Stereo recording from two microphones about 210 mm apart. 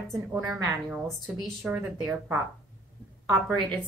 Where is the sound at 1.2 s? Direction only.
Centre (ahead or behind).